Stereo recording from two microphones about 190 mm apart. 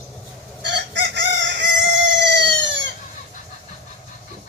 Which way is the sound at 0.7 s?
65° right (ahead or behind).